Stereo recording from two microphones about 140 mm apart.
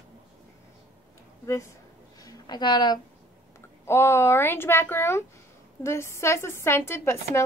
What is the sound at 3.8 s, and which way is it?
A woman's voice, 20° left (ahead or behind).